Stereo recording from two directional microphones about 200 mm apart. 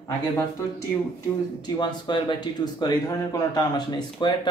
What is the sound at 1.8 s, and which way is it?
Speech, 20° left (ahead or behind).